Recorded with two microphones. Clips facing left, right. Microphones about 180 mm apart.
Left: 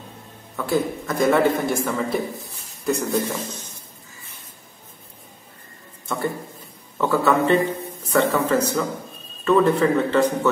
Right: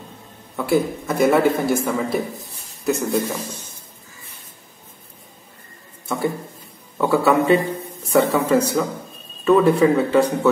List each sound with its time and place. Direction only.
0.6 s a man's voice: 10° right (ahead or behind)
6.0 s a man's voice: 10° right (ahead or behind)